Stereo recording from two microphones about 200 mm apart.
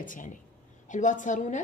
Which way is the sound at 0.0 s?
40° left (ahead or behind).